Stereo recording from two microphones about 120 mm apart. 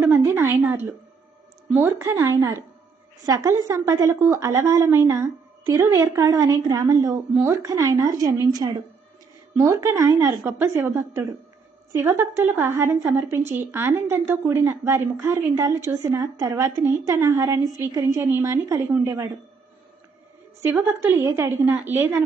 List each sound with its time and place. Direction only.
0.0 s a woman's voice: 20° right (ahead or behind)
20.8 s a woman's voice: 20° right (ahead or behind)